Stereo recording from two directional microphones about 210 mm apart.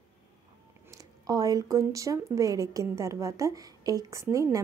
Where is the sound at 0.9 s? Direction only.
15° right (ahead or behind).